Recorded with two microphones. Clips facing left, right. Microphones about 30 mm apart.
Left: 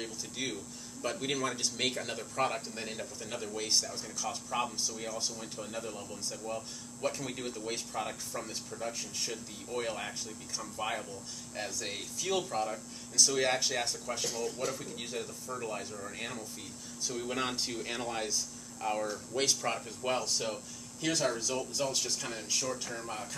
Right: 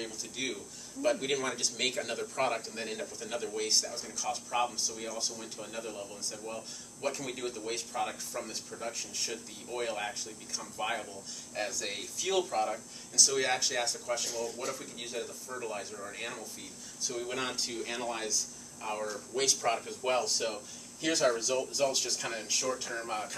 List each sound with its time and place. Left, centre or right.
0.0 s speech: centre
13.1 s speech: centre
14.3 s speech: left
14.7 s speech: centre
19.6 s speech: centre